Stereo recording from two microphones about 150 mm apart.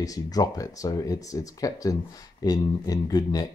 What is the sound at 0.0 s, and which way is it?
Speech, 25° left (ahead or behind).